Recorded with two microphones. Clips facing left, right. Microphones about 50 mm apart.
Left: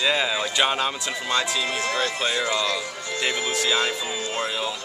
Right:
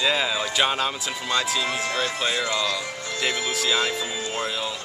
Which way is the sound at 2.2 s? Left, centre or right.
Centre.